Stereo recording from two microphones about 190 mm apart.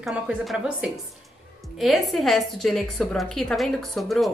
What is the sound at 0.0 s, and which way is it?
A woman's voice, 5° right (ahead or behind).